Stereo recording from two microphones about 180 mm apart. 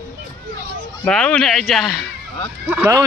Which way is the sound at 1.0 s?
5° left (ahead or behind).